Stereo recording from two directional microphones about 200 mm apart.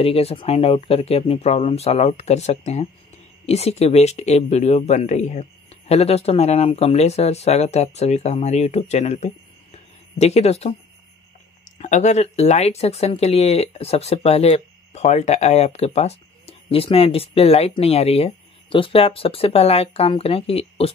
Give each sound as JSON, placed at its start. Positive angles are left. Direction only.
{"t": 0.0, "sound": "speech", "side_deg": 30}
{"t": 11.8, "sound": "speech", "side_deg": 35}